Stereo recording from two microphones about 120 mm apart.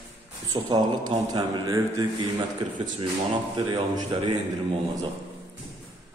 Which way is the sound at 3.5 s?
35° right (ahead or behind).